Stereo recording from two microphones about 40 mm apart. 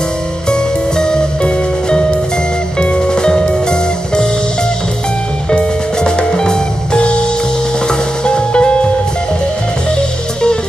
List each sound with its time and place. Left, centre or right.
0.5 s music: centre
5.5 s music: left
8.3 s music: left